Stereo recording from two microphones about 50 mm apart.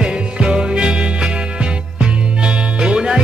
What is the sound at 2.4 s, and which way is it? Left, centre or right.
Music, centre.